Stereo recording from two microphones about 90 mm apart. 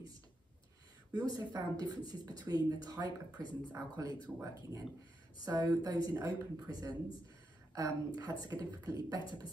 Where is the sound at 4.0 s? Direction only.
35° right (ahead or behind).